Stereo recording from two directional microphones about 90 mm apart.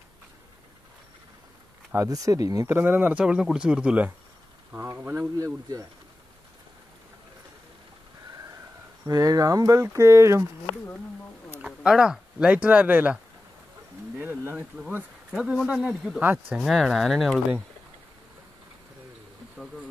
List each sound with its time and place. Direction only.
2.0 s speech: 40° right (ahead or behind)
2.7 s speech: 20° right (ahead or behind)
4.7 s speech: 25° right (ahead or behind)
5.4 s speech: 40° right (ahead or behind)
9.0 s speech: 40° right (ahead or behind)
11.6 s speech: 10° right (ahead or behind)
16.2 s speech: 20° right (ahead or behind)
16.6 s speech: centre (ahead or behind)